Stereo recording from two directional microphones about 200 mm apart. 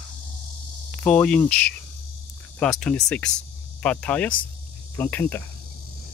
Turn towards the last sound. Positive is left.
turn(degrees=10)  # may be behind; listen again after turning